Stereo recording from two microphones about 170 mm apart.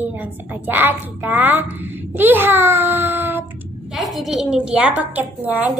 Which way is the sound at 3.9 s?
Centre (ahead or behind).